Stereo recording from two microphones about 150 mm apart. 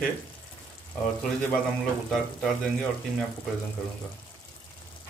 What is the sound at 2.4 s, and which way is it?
Speech, centre (ahead or behind).